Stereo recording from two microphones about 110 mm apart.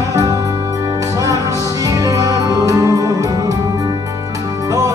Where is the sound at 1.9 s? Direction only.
30° right (ahead or behind).